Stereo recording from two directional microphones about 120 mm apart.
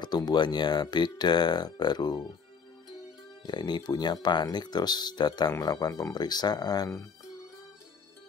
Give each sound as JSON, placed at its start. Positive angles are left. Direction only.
{"t": 0.0, "sound": "speech", "side_deg": 35}
{"t": 3.4, "sound": "speech", "side_deg": 35}